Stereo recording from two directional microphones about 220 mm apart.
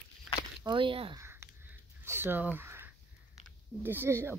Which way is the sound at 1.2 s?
10° right (ahead or behind).